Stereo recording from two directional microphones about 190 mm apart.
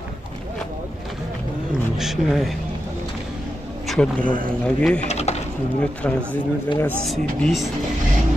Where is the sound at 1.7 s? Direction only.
Centre (ahead or behind).